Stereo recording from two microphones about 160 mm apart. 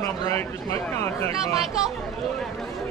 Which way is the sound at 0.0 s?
15° left (ahead or behind).